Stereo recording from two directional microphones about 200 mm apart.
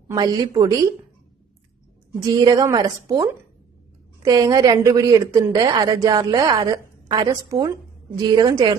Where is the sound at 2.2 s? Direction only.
20° right (ahead or behind).